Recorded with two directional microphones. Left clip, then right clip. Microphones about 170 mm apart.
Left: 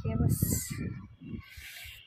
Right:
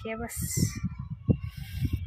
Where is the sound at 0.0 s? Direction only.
25° right (ahead or behind).